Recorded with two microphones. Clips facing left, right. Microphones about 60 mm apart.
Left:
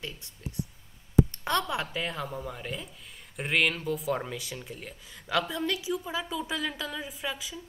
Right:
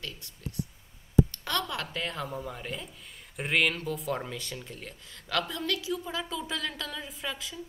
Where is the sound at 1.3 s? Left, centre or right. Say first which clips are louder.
Left 4 dB; left.